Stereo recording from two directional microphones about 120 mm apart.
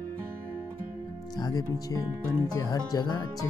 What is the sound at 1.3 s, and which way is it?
Speech, 30° left (ahead or behind).